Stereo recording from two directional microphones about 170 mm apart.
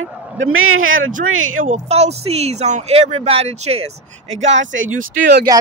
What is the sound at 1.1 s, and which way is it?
Speech, 50° right (ahead or behind).